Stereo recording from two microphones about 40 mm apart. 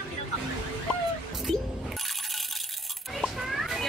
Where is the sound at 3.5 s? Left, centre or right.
Centre.